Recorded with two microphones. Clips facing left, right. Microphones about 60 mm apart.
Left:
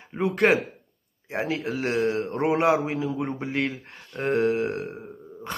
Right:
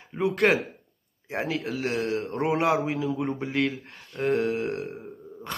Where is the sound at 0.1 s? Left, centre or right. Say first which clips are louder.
Even; left.